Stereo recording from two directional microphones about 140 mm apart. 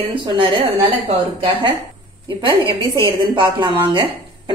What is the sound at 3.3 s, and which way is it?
Speech, 35° right (ahead or behind).